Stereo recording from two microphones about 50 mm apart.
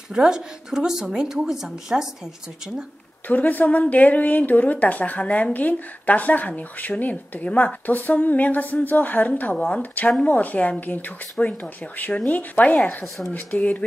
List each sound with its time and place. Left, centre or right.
0.1 s a woman's voice: centre
3.3 s speech: left